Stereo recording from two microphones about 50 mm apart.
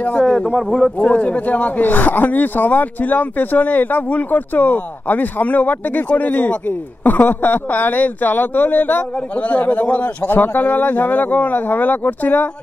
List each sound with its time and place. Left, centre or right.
0.2 s speech: centre
1.0 s speech: left